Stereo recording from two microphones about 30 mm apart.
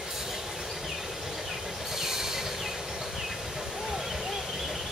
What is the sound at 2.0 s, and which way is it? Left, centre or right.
Train, centre.